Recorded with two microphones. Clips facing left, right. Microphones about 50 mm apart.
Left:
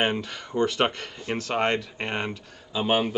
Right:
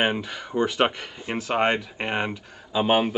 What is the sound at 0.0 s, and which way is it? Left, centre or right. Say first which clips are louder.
Speech: right 1 dB; centre.